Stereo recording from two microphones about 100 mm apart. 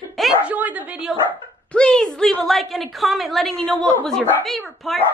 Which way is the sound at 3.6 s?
10° left (ahead or behind).